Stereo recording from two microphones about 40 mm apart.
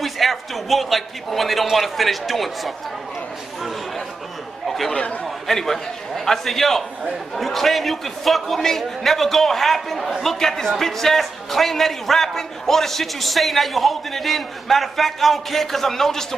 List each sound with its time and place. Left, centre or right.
0.0 s a man's voice: centre
4.6 s chatter: centre
4.9 s chatter: left
5.2 s a man's voice: centre